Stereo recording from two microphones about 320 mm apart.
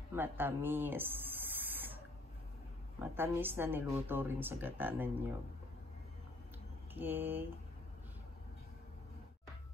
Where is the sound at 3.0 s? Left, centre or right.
Centre.